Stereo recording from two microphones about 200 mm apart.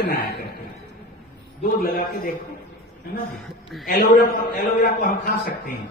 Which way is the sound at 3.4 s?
Centre (ahead or behind).